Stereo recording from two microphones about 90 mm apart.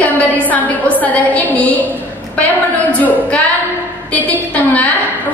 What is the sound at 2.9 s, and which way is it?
A woman's voice, 20° left (ahead or behind).